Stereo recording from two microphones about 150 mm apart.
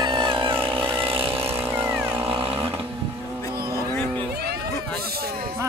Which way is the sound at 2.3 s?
35° right (ahead or behind).